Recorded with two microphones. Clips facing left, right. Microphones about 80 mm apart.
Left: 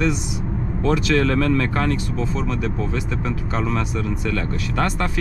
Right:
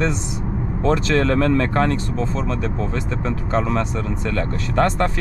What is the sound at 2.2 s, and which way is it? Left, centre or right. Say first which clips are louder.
Speech: right 1 dB; centre.